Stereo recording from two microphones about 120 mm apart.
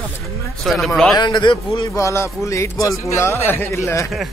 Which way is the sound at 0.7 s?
5° left (ahead or behind).